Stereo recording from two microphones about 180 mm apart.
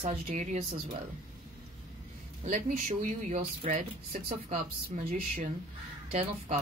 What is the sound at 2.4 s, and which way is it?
Speech, 40° right (ahead or behind).